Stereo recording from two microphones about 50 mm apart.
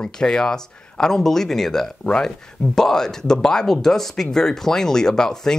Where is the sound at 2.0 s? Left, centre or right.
Centre.